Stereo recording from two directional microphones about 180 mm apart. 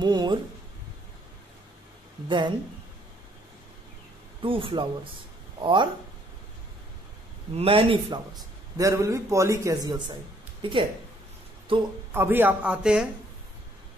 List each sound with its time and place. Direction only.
0.0 s a sound: 25° right (ahead or behind)
2.2 s speech: 25° right (ahead or behind)
4.4 s speech: 30° right (ahead or behind)
7.5 s speech: 30° right (ahead or behind)
8.7 s a man's voice: 20° right (ahead or behind)
12.1 s a man's voice: 10° right (ahead or behind)